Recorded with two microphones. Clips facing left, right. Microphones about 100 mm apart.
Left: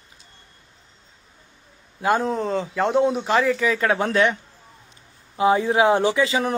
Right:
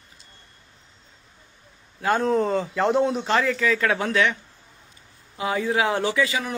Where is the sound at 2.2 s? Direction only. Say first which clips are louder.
Right 2 dB; centre (ahead or behind).